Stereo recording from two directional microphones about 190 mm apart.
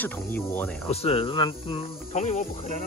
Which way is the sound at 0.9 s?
30° left (ahead or behind).